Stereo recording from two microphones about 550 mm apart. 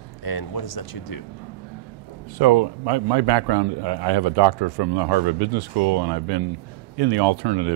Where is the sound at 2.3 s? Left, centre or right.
Right.